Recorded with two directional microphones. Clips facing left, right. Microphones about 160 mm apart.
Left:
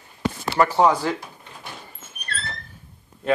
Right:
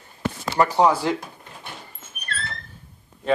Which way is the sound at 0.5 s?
15° right (ahead or behind).